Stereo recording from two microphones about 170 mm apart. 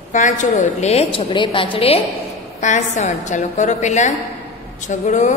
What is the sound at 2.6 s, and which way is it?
A woman's voice, 45° left (ahead or behind).